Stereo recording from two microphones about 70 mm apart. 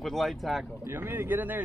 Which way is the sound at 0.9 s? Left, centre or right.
Right.